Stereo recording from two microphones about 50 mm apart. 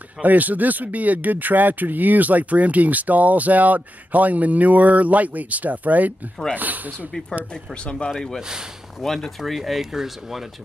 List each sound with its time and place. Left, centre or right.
0.2 s speech: right
7.1 s speech: centre
7.5 s speech: left
8.4 s speech: centre
9.0 s speech: centre